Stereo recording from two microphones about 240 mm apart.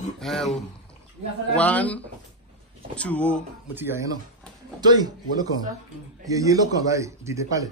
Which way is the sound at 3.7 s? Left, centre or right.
Centre.